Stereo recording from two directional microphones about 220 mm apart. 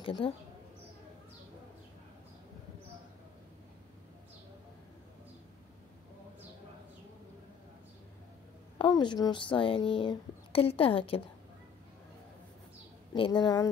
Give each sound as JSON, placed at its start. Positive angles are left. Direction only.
{"t": 0.0, "sound": "speech", "side_deg": 25}
{"t": 8.7, "sound": "speech", "side_deg": 20}
{"t": 13.1, "sound": "speech", "side_deg": 20}